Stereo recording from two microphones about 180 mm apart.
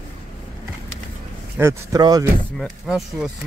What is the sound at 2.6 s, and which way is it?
Speech, 5° right (ahead or behind).